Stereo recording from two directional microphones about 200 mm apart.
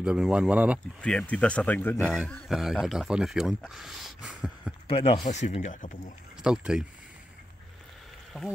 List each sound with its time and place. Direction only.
0.0 s speech: 5° right (ahead or behind)
1.0 s speech: 5° left (ahead or behind)
4.8 s speech: 25° left (ahead or behind)
6.4 s speech: 5° right (ahead or behind)